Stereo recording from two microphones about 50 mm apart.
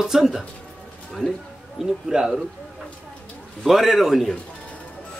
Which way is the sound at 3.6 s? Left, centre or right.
Centre.